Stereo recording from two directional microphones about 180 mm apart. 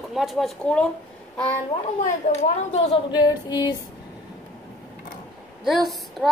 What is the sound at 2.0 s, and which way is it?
A child's voice, 45° left (ahead or behind).